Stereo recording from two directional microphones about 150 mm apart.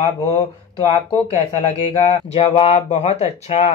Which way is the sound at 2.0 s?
45° left (ahead or behind).